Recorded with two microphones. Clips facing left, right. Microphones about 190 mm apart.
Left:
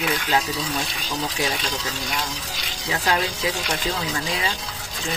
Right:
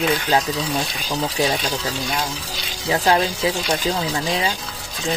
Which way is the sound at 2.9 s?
30° right (ahead or behind).